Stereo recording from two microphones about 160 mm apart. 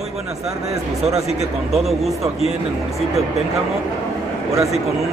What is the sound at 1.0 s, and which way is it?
Speech, 45° right (ahead or behind).